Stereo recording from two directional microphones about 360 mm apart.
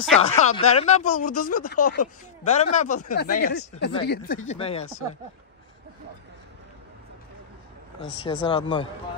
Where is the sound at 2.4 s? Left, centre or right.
Centre.